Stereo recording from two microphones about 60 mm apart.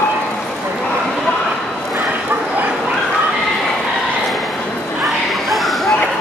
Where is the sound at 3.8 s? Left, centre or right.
Centre.